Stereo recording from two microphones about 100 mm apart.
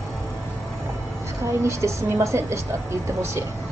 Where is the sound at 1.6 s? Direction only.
30° right (ahead or behind).